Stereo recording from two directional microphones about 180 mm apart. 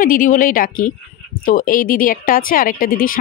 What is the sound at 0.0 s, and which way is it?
Speech, 50° left (ahead or behind).